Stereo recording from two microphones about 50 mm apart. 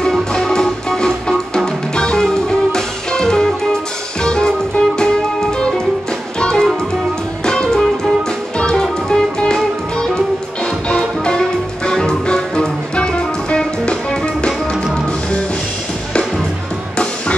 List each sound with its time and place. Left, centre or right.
0.0 s music: centre